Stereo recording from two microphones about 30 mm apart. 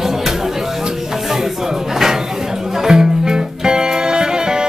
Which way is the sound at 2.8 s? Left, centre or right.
Centre.